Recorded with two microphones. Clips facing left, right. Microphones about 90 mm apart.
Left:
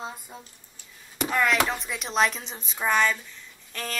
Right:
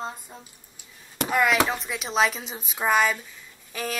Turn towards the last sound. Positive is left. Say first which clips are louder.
# right 4 dB
turn(degrees=-10)  # may be behind; listen again after turning